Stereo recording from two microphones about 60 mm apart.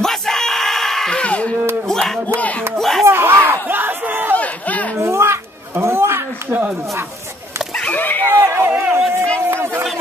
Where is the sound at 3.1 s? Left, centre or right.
Right.